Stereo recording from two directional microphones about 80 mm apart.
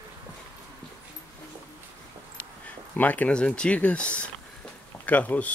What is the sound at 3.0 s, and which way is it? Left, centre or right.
Speech, left.